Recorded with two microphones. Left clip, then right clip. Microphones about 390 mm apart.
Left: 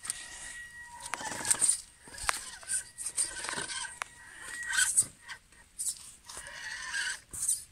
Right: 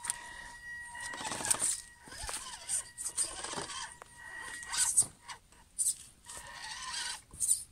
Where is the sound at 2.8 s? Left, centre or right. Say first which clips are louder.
Left 2 dB; centre.